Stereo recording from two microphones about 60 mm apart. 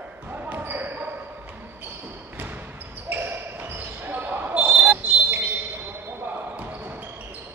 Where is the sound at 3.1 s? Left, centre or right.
Right.